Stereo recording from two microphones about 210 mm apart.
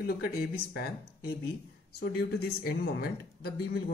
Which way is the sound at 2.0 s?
50° left (ahead or behind).